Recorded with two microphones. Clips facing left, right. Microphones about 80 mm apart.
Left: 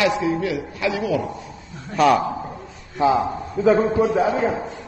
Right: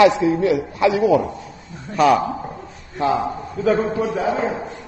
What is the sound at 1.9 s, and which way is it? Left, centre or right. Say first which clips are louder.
Speech: right 1 dB; centre.